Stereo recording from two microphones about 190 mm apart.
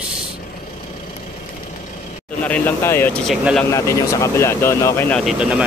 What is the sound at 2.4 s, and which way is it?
Speech, 10° left (ahead or behind).